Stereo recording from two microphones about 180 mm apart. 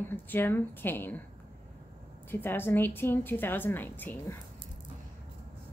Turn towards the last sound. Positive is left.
turn(degrees=10)  # may be behind; listen again after turning